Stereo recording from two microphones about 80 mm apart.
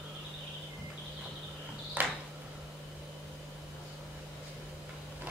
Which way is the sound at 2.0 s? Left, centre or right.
Right.